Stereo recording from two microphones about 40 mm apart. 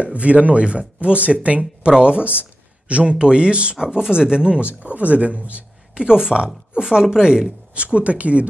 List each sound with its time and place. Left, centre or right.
0.0 s speech: right
3.7 s speech: centre
7.7 s speech: right